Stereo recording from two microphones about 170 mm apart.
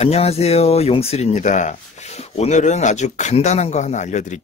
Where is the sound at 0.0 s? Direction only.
35° left (ahead or behind).